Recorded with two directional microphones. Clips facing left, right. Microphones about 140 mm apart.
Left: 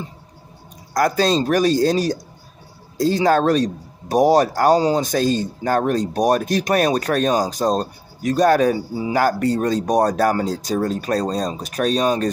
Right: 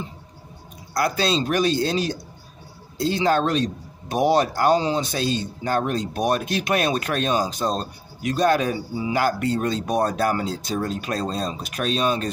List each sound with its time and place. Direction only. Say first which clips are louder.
0.9 s speech: left 5 dB; 45° left (ahead or behind)